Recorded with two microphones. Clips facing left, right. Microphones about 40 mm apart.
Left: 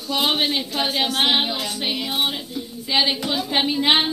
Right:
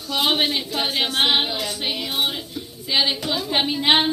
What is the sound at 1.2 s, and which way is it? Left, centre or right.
A woman's voice, centre.